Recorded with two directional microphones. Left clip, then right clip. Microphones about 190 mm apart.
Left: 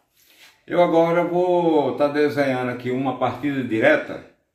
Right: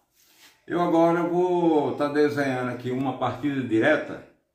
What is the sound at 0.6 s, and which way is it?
A man's voice, 25° left (ahead or behind).